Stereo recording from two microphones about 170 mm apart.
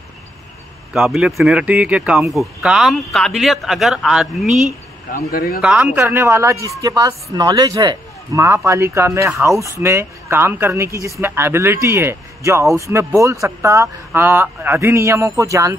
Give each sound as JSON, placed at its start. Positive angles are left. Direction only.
{"t": 0.9, "sound": "speech", "side_deg": 0}
{"t": 5.1, "sound": "speech", "side_deg": 60}
{"t": 5.6, "sound": "a man's voice", "side_deg": -10}